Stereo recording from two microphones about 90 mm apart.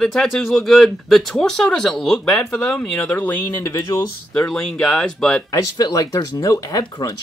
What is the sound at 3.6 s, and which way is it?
Speech, 35° left (ahead or behind).